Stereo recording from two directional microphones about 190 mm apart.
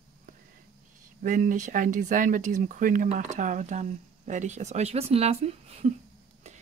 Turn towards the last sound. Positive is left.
turn(degrees=-35)  # may be behind; listen again after turning